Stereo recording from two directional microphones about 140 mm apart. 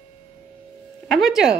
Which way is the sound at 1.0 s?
Centre (ahead or behind).